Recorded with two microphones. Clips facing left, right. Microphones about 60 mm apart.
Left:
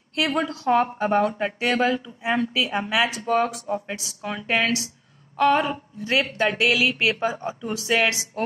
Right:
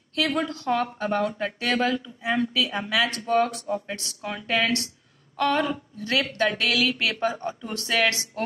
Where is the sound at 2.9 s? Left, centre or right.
Centre.